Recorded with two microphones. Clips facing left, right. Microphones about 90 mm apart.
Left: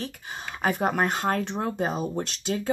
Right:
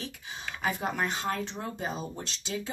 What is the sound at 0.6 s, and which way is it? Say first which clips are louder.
Speech: left 6 dB; 50° left (ahead or behind).